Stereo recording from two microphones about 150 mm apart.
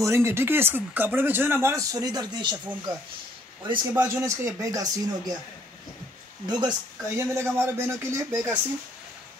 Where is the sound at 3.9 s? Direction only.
15° right (ahead or behind).